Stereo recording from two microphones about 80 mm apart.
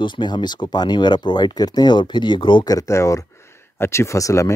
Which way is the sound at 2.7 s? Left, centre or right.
Left.